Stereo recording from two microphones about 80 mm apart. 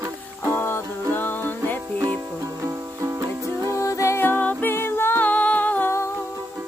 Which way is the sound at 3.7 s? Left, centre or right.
Left.